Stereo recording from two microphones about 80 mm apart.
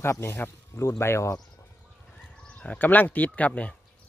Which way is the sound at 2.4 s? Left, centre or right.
Centre.